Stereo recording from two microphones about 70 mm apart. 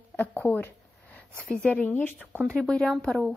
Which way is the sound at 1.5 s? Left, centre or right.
Centre.